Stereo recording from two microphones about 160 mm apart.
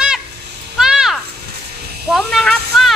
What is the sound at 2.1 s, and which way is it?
Speech, centre (ahead or behind).